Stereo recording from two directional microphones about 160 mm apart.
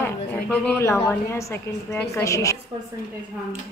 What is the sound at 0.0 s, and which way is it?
A woman's voice, 15° left (ahead or behind).